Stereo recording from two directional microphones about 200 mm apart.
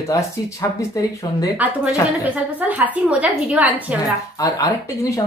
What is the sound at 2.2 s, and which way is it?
A woman's voice, 10° right (ahead or behind).